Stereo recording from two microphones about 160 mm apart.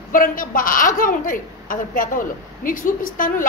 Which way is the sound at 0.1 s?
60° left (ahead or behind).